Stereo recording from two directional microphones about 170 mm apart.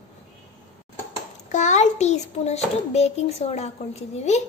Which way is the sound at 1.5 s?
45° left (ahead or behind).